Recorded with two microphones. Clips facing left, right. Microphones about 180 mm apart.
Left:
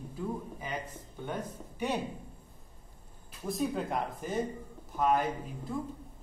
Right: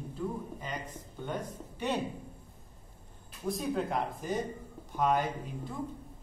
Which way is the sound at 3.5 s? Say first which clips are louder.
Even; centre (ahead or behind).